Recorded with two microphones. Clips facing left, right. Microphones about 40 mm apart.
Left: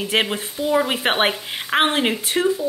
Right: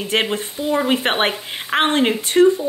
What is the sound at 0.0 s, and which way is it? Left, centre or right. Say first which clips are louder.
A woman's voice: right 1 dB; centre.